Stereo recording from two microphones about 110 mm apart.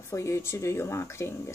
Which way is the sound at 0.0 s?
25° left (ahead or behind).